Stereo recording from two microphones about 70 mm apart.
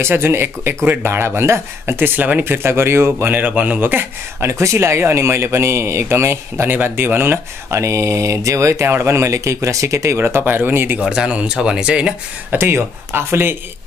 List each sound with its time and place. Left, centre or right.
0.0 s speech: right
3.3 s speech: right
4.5 s speech: right
7.8 s speech: right
11.0 s speech: centre
12.4 s speech: right